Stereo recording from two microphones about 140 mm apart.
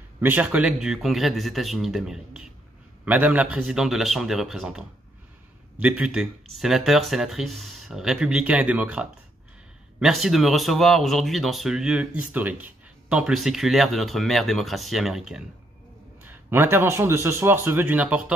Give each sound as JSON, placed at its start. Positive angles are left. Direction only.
{"t": 0.2, "sound": "a man's voice", "side_deg": -10}
{"t": 16.2, "sound": "a man's voice", "side_deg": -15}